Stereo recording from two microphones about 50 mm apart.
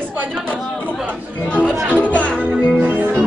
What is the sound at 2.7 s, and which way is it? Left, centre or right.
Music, right.